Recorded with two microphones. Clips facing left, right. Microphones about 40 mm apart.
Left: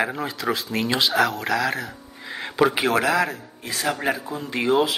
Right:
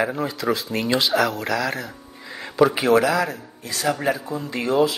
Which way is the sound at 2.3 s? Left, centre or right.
Centre.